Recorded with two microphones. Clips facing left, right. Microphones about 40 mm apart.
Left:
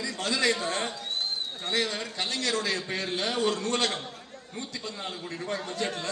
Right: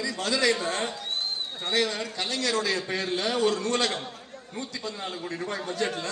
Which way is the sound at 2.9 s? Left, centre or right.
Left.